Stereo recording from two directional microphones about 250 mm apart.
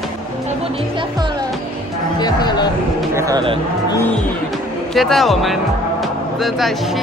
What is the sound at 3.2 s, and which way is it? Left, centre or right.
Speech, centre.